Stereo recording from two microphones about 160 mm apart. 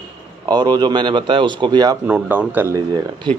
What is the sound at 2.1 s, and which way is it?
Speech, 10° right (ahead or behind).